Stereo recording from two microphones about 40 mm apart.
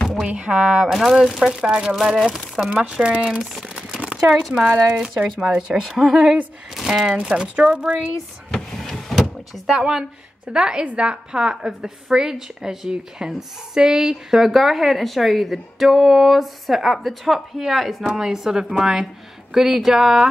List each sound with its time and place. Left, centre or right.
0.4 s a woman's voice: centre
0.8 s speech: centre
1.5 s a woman's voice: centre
2.0 s speech: centre
3.0 s a woman's voice: right
3.6 s crumpling: centre
4.0 s a sound: centre
4.6 s a woman's voice: right
5.8 s speech: centre
7.2 s a woman's voice: right
8.5 s power windows: centre
10.5 s a woman's voice: right
14.4 s speech: centre